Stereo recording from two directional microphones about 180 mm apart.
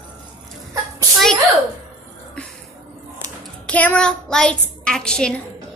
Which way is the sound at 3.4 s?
5° left (ahead or behind).